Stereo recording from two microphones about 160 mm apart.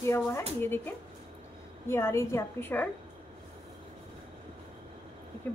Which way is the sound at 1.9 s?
15° left (ahead or behind).